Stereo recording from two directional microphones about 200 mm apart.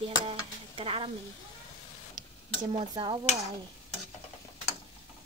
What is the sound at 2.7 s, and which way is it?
Speech, 25° right (ahead or behind).